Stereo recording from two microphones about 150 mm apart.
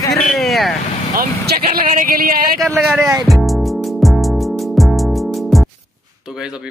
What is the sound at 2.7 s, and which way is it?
Speech, 5° right (ahead or behind).